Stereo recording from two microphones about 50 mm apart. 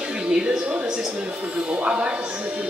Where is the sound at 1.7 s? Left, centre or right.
Right.